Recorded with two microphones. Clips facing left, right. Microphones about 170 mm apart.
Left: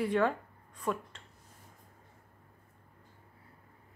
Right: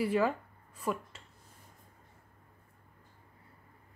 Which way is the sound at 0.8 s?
5° right (ahead or behind).